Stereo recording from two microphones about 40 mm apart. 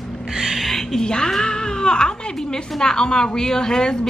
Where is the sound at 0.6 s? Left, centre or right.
Centre.